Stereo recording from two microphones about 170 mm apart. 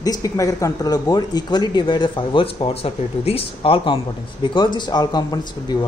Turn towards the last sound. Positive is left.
turn(degrees=25)  # may be behind; listen again after turning